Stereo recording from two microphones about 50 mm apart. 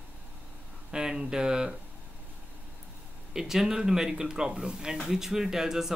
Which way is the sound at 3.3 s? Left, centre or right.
Centre.